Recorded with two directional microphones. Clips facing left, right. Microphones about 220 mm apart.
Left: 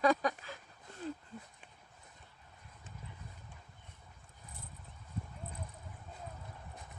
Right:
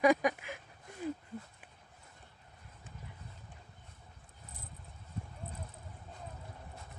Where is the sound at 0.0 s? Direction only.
15° right (ahead or behind).